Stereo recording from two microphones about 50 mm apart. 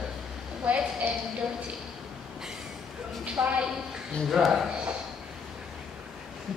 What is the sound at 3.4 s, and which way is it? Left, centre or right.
Speech, right.